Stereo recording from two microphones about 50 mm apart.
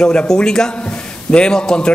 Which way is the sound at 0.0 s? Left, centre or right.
Left.